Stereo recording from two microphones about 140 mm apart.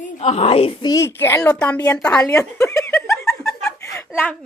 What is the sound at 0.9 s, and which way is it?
Speech, 15° left (ahead or behind).